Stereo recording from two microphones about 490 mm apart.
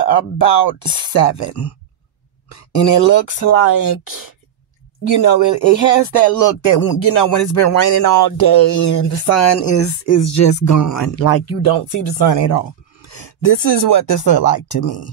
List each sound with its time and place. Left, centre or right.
0.0 s speech: left